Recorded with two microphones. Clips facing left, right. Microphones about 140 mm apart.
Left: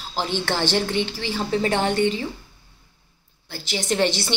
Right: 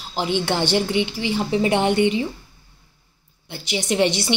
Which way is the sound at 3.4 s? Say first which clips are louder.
Right 1 dB; 15° right (ahead or behind).